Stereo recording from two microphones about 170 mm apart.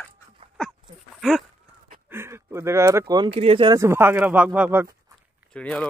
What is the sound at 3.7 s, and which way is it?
Speech, 15° right (ahead or behind).